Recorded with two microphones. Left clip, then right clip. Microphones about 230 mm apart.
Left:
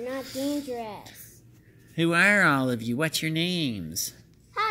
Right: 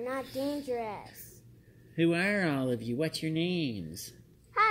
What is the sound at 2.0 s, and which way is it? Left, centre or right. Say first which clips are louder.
Speech: left 8 dB; left.